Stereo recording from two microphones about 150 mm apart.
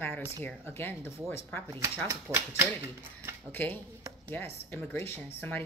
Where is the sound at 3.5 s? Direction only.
10° left (ahead or behind).